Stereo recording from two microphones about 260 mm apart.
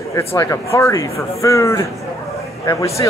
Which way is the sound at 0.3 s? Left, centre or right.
Centre.